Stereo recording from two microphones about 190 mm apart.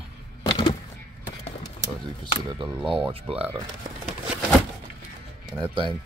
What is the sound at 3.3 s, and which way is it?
Speech, 30° right (ahead or behind).